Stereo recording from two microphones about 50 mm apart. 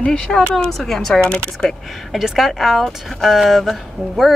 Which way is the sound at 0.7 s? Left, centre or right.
Centre.